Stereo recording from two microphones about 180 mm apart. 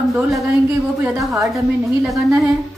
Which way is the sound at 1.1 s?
Centre (ahead or behind).